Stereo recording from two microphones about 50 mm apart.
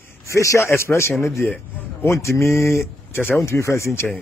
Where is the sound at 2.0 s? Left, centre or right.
Left.